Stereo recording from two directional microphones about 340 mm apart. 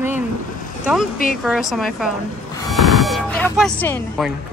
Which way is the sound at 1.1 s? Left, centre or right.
Left.